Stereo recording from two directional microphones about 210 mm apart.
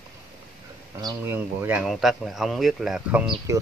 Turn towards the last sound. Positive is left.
turn(degrees=-5)  # may be behind; listen again after turning